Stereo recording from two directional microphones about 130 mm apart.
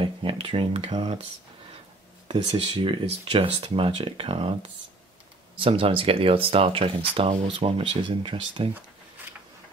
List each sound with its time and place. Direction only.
0.0 s speech: 45° right (ahead or behind)
2.2 s speech: 45° right (ahead or behind)
5.6 s speech: 45° right (ahead or behind)